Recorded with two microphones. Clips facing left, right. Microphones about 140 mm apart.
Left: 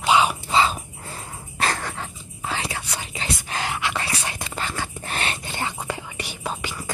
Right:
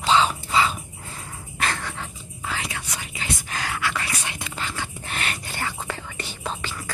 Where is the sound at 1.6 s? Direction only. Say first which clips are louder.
Left 2 dB; 40° left (ahead or behind); by 4.0 s 20° left (ahead or behind).